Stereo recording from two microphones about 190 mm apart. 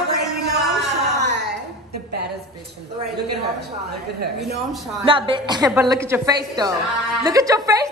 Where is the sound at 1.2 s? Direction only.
65° right (ahead or behind).